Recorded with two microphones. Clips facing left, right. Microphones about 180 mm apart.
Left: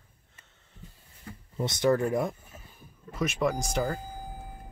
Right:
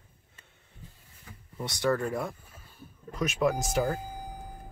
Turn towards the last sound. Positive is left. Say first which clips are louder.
# right 1 dB
turn(degrees=0)  # may be behind; listen again after turning